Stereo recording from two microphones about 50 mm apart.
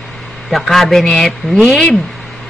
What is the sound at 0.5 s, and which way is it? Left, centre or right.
Speech, centre.